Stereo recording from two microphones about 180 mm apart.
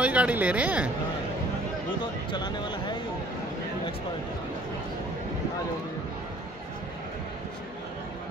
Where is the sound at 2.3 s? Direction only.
25° left (ahead or behind).